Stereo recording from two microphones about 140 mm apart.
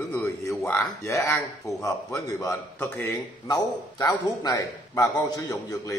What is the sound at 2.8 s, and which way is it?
Speech, 15° left (ahead or behind).